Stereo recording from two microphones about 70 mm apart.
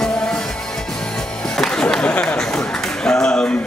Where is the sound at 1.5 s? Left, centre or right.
Centre.